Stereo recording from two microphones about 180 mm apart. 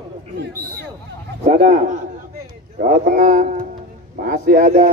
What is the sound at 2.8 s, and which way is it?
A man's voice, 50° right (ahead or behind).